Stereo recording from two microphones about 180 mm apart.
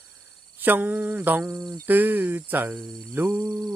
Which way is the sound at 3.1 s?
15° right (ahead or behind).